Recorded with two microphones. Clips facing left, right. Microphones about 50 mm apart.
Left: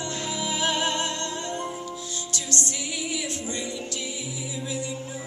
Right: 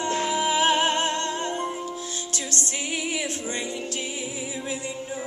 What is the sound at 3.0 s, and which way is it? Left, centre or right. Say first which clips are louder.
Music: right 2 dB; right.